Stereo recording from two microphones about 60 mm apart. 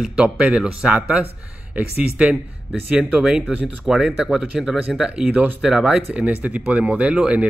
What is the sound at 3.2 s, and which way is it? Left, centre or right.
Speech, centre.